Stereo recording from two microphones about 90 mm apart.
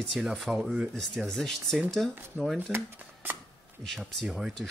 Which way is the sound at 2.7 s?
20° right (ahead or behind).